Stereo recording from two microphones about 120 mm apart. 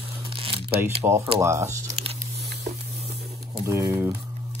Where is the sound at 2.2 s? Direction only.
70° right (ahead or behind).